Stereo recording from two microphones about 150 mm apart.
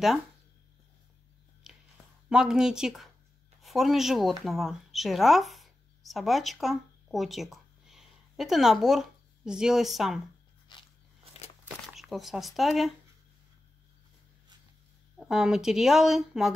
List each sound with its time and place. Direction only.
1.6 s a sound: 5° right (ahead or behind)
2.2 s a woman's voice: 5° right (ahead or behind)
10.7 s biting: 30° left (ahead or behind)
11.6 s speech: centre (ahead or behind)
15.1 s speech: 5° right (ahead or behind)